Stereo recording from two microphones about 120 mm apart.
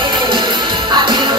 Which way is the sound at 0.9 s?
40° right (ahead or behind).